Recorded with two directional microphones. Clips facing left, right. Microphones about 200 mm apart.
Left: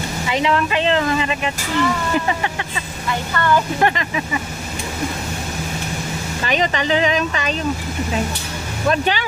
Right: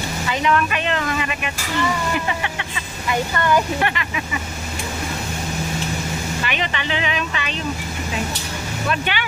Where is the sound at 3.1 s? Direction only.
15° right (ahead or behind).